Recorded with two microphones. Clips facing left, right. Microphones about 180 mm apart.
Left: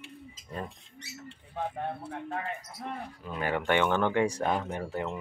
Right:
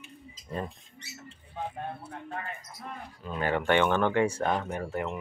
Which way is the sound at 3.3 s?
10° left (ahead or behind).